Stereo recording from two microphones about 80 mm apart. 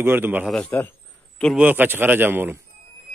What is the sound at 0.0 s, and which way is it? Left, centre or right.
Speech, right.